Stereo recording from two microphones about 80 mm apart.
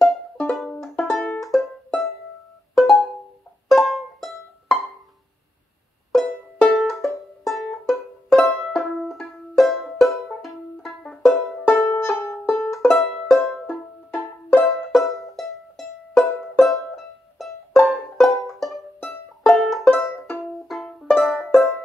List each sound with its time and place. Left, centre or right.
0.0 s music: centre
6.1 s music: centre
11.6 s music: left
12.4 s music: centre
13.7 s music: left
14.9 s music: centre